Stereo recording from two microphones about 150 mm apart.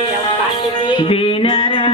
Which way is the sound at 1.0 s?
35° left (ahead or behind).